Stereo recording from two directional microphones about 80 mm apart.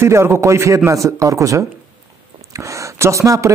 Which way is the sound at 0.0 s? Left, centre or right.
Right.